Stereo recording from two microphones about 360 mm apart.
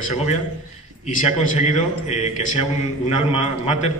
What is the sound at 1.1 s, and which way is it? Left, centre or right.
A man's voice, centre.